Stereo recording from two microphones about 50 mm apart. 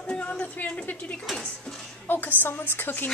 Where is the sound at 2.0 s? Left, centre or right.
Left.